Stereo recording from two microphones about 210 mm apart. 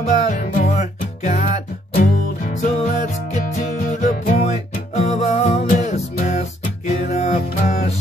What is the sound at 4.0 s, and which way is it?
Music, 35° left (ahead or behind).